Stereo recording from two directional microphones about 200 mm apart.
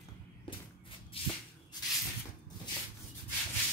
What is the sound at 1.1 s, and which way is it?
Shuffle, 30° left (ahead or behind).